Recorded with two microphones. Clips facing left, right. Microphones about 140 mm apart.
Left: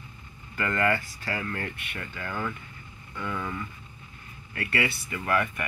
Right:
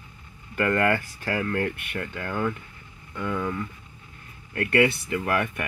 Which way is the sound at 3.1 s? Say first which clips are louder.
Right 5 dB; 15° right (ahead or behind).